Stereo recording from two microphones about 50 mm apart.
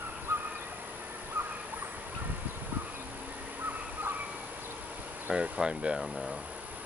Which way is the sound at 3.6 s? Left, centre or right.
Right.